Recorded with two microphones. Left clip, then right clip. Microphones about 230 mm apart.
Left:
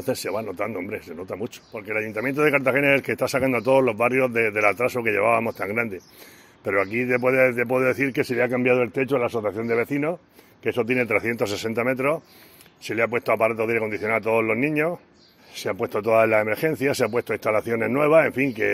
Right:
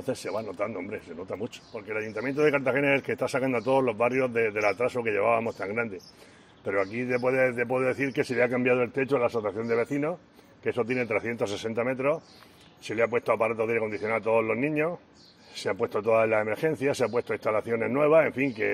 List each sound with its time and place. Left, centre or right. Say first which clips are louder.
0.0 s speech: left 5 dB; left